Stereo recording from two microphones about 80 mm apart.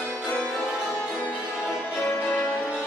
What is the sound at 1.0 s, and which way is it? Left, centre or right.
Music, left.